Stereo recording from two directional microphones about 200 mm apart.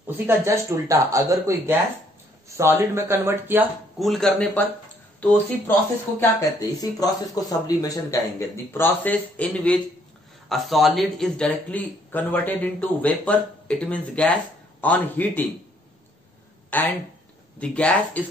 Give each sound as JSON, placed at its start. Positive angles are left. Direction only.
{"t": 0.3, "sound": "speech", "side_deg": -15}
{"t": 4.0, "sound": "a man's voice", "side_deg": 0}
{"t": 16.7, "sound": "a man's voice", "side_deg": 10}